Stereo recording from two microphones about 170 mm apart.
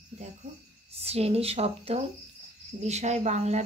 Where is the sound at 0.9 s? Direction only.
35° right (ahead or behind).